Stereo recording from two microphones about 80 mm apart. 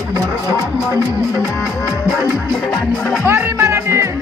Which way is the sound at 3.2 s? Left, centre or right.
Right.